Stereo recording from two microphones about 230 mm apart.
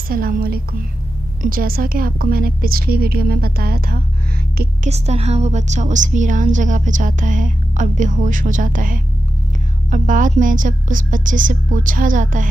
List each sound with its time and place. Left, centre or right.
0.1 s a woman's voice: right
4.8 s a woman's voice: right